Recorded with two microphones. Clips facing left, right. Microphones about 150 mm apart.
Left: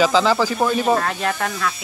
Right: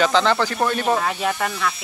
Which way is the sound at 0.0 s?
5° left (ahead or behind).